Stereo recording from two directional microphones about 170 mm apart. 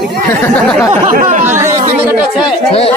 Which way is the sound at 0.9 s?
50° right (ahead or behind).